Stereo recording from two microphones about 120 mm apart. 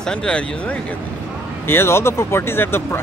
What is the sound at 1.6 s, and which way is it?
Speech, 20° left (ahead or behind).